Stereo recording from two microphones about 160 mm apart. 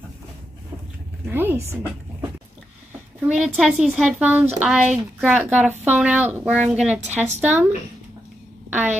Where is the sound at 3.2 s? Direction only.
5° right (ahead or behind).